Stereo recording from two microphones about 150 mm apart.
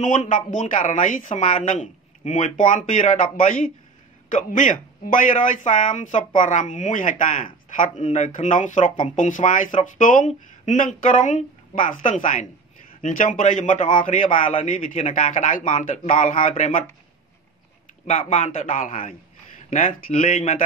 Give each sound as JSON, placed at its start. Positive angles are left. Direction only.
{"t": 0.0, "sound": "speech", "side_deg": 55}
{"t": 18.3, "sound": "speech", "side_deg": 55}